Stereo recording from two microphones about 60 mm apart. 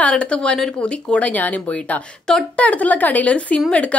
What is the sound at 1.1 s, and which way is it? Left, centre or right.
Speech, left.